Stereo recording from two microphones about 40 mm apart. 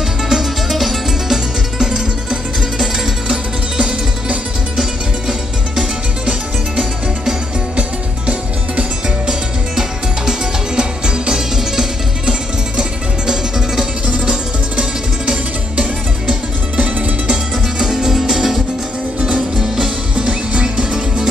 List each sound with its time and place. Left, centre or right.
0.3 s music: centre
3.3 s music: centre
6.8 s music: right
10.8 s music: centre
14.2 s music: right
17.7 s music: centre
19.1 s music: right